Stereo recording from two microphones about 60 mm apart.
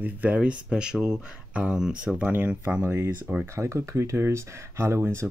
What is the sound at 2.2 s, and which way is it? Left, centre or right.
Speech, right.